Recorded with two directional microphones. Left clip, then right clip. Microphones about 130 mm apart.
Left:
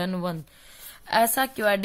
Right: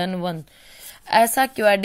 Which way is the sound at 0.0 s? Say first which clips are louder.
Right 4 dB; 15° right (ahead or behind).